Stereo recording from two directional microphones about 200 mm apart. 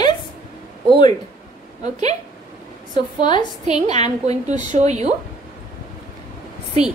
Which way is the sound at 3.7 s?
35° right (ahead or behind).